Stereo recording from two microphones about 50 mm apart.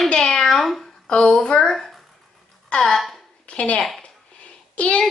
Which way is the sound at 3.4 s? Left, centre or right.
Left.